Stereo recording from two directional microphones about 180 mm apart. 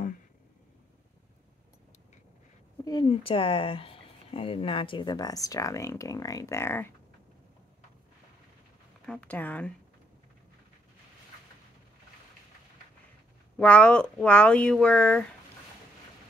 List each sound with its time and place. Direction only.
2.8 s speech: 25° left (ahead or behind)
9.0 s speech: 5° left (ahead or behind)
13.6 s speech: 5° left (ahead or behind)